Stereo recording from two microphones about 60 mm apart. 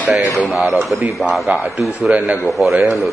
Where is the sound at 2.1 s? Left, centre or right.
Right.